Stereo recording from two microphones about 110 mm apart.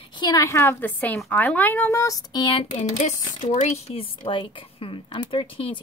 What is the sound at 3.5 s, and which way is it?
Speech, 90° left.